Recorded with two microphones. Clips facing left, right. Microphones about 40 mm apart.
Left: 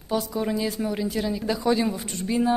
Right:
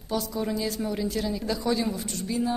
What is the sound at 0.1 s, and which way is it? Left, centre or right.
A woman's voice, centre.